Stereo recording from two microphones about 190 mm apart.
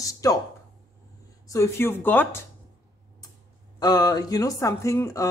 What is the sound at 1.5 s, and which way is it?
Speech, 15° left (ahead or behind).